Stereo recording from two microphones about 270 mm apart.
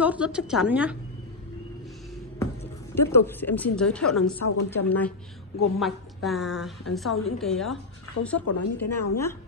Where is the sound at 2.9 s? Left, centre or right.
Centre.